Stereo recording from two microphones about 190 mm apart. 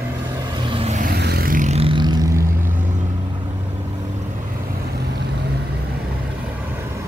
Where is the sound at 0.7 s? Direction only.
35° right (ahead or behind).